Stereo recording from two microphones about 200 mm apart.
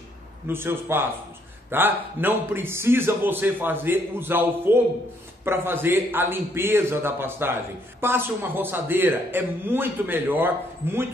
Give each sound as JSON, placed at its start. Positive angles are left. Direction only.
{"t": 0.5, "sound": "a man's voice", "side_deg": -10}